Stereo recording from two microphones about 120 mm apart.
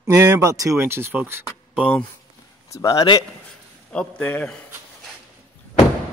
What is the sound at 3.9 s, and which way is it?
Speech, 10° left (ahead or behind).